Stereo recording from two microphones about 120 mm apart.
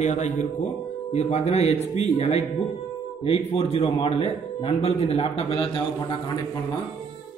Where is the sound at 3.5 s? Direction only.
55° left (ahead or behind).